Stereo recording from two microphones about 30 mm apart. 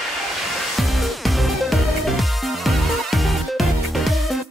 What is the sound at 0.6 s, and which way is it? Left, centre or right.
Music, centre.